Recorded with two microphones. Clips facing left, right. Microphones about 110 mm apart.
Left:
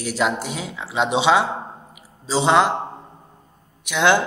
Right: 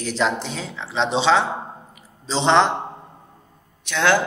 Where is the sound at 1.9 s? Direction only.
10° left (ahead or behind).